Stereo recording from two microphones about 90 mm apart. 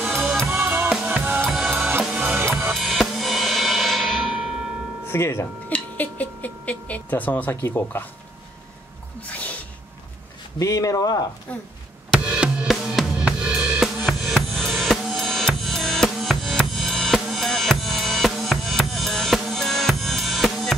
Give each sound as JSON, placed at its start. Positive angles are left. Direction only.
{"t": 0.0, "sound": "drum kit", "side_deg": -5}
{"t": 0.7, "sound": "drum kit", "side_deg": -20}
{"t": 1.5, "sound": "music", "side_deg": -5}
{"t": 1.9, "sound": "music", "side_deg": -20}
{"t": 2.7, "sound": "music", "side_deg": 0}
{"t": 5.0, "sound": "speech", "side_deg": 30}
{"t": 5.7, "sound": "a sound", "side_deg": 15}
{"t": 9.3, "sound": "sneeze", "side_deg": 15}
{"t": 10.6, "sound": "speech", "side_deg": 40}
{"t": 11.5, "sound": "speech", "side_deg": 15}
{"t": 12.1, "sound": "drum kit", "side_deg": -10}
{"t": 14.0, "sound": "drum kit", "side_deg": 0}